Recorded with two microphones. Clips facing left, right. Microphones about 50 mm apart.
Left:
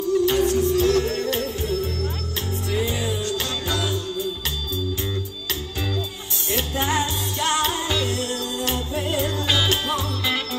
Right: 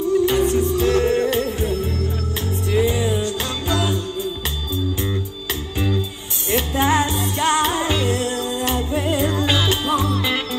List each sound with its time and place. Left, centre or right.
0.2 s music: right
6.5 s music: right